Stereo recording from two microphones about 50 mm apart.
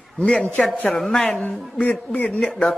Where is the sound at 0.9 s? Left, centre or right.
Centre.